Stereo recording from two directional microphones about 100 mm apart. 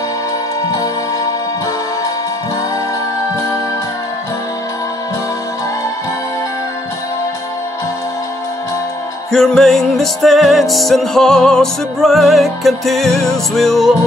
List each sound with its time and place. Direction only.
3.3 s music: 35° left (ahead or behind)
9.3 s music: 5° left (ahead or behind)